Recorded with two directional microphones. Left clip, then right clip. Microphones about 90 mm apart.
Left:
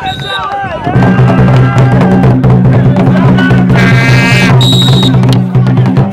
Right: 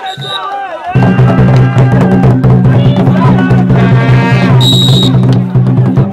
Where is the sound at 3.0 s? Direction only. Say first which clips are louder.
Left 2 dB; 50° left (ahead or behind).